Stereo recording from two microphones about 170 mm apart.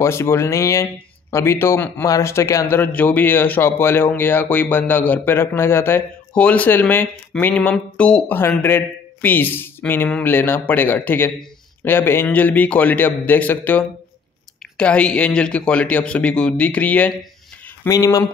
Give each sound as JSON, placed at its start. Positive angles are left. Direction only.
{"t": 0.0, "sound": "speech", "side_deg": 15}
{"t": 17.8, "sound": "speech", "side_deg": 20}